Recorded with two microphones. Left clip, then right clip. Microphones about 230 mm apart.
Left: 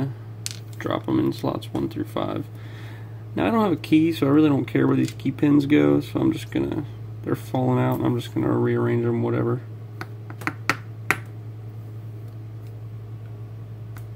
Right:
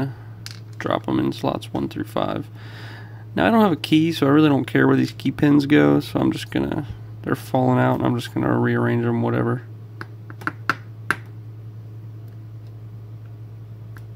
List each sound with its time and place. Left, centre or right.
0.7 s speech: centre